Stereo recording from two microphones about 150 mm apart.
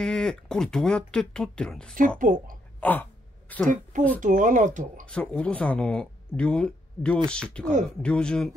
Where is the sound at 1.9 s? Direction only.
65° right (ahead or behind).